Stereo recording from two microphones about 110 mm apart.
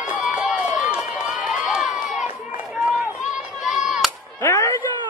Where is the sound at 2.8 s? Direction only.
5° right (ahead or behind).